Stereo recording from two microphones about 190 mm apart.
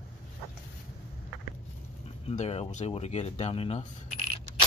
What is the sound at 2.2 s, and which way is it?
Speech, 35° left (ahead or behind).